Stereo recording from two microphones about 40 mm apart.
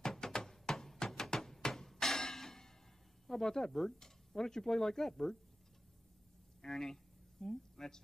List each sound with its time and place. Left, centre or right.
0.0 s a sound: centre
3.3 s speech: centre
6.6 s speech: centre